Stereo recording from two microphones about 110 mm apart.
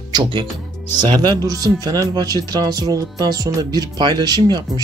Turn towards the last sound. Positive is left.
turn(degrees=-40)  # may be behind; listen again after turning